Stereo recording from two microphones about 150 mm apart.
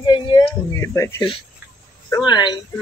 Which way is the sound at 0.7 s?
20° left (ahead or behind).